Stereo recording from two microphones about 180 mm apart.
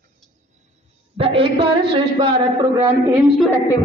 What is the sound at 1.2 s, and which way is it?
A man's voice, 30° right (ahead or behind).